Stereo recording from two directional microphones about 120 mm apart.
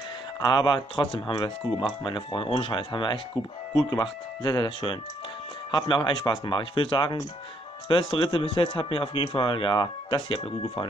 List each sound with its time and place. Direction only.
0.4 s speech: 35° left (ahead or behind)